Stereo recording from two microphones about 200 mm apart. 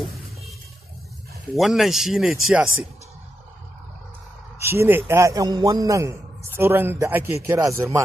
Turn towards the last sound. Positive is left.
turn(degrees=-15)  # may be behind; listen again after turning